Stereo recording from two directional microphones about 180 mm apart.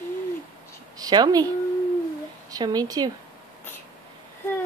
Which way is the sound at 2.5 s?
20° right (ahead or behind).